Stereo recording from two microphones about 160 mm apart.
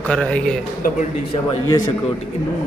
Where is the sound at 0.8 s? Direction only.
55° left (ahead or behind).